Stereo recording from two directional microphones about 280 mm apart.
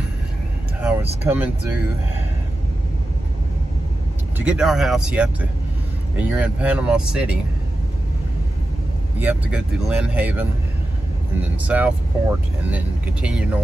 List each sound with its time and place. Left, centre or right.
0.7 s vehicle: centre
4.4 s speech: centre
9.2 s speech: centre
11.6 s speech: centre